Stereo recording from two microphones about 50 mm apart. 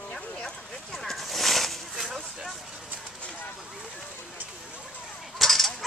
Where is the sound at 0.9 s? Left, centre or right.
Centre.